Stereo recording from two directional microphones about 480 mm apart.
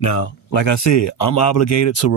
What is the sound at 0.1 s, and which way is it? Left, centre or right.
Speech, left.